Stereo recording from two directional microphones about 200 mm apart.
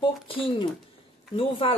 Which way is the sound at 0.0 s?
25° left (ahead or behind).